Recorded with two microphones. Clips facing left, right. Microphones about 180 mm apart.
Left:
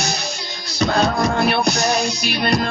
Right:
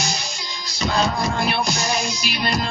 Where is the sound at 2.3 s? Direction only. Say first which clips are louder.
Left 5 dB; 60° left (ahead or behind).